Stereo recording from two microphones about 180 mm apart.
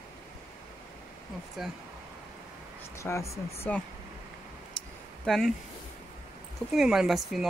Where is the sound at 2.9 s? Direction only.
15° left (ahead or behind).